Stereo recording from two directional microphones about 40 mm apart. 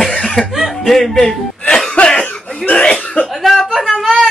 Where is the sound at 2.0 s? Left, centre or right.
Left.